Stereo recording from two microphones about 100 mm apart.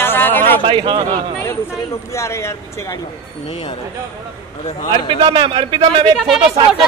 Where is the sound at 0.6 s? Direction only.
55° right (ahead or behind).